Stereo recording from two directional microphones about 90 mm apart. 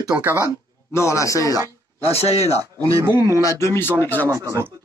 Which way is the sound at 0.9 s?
35° left (ahead or behind).